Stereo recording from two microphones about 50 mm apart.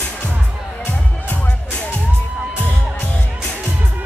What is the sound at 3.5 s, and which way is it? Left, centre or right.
Music, right.